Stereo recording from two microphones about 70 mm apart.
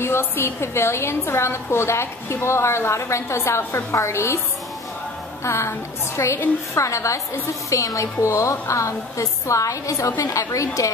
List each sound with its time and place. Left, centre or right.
0.0 s a woman's voice: left
5.4 s a woman's voice: left